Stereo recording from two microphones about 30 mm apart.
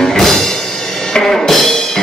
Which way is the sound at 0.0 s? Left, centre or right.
Centre.